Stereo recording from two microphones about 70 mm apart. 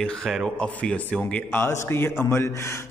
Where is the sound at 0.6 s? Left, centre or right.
Centre.